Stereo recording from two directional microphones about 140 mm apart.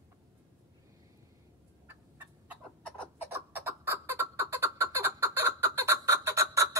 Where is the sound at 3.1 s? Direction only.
15° right (ahead or behind).